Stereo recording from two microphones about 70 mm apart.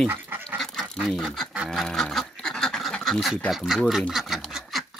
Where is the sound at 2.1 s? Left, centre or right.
Centre.